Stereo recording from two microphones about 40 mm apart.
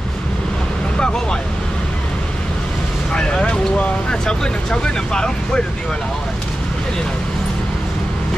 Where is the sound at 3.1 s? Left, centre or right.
Left.